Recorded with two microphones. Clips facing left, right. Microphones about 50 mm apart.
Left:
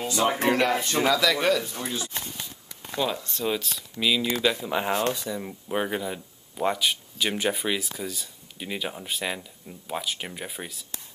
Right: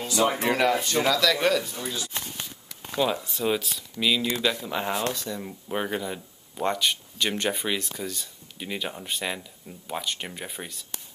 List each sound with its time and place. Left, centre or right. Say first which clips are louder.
0.6 s speech: even; centre
1.8 s speech: left 1 dB; left
3.0 s speech: right 2 dB; centre